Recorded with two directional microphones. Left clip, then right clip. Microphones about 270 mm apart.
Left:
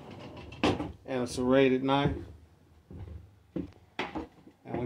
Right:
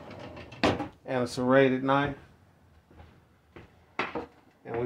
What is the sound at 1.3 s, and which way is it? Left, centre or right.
Speech, right.